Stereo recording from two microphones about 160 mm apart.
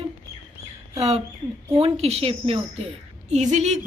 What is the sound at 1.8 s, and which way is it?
A woman's voice, 40° right (ahead or behind).